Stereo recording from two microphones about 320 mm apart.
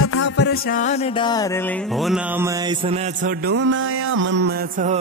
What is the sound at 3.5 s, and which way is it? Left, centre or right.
Music, right.